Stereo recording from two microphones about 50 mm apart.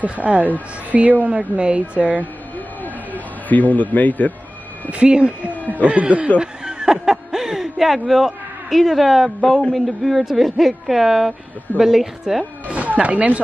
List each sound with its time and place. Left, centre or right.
0.0 s a woman's voice: right
2.8 s a sound: left
4.9 s speech: right
6.4 s snicker: centre
8.1 s a man's voice: centre
9.4 s a woman's voice: centre
12.6 s speech: right